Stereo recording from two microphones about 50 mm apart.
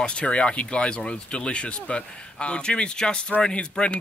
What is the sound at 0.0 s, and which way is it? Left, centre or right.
Speech, left.